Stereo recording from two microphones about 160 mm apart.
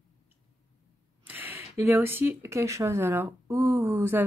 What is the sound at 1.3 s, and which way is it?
Speech, 10° right (ahead or behind).